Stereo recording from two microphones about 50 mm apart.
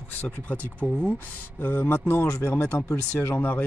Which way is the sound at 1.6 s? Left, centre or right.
Left.